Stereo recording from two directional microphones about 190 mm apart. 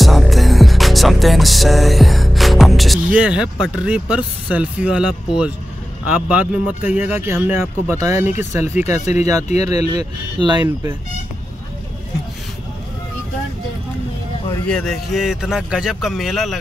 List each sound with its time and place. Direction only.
0.0 s music: centre (ahead or behind)
6.1 s speech: 5° right (ahead or behind)
9.0 s speech: 35° left (ahead or behind)
9.9 s speech: 25° right (ahead or behind)
14.7 s a man's voice: centre (ahead or behind)